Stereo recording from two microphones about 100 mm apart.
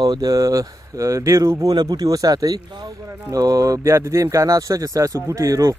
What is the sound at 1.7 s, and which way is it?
Speech, 45° right (ahead or behind).